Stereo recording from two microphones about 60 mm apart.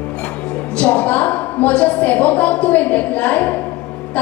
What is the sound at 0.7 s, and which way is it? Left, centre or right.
A woman's voice, left.